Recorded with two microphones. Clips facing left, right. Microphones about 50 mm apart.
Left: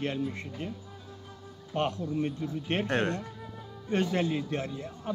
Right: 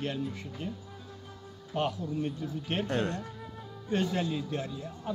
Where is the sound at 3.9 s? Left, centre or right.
Left.